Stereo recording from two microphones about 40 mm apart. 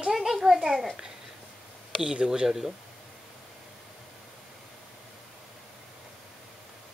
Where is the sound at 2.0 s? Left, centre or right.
Centre.